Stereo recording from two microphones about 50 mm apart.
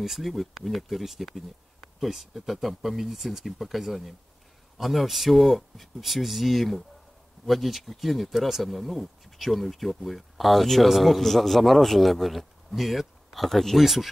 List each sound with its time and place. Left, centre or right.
0.0 s speech: centre